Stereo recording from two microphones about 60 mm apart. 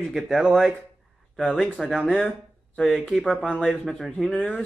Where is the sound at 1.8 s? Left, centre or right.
Centre.